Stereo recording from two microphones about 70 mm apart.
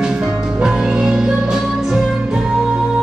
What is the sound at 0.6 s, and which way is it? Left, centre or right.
Music, centre.